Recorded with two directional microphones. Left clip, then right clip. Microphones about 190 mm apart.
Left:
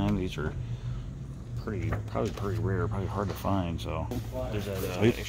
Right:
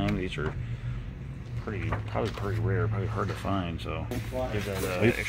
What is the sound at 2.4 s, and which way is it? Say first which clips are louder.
Speech: right 1 dB; 55° left (ahead or behind).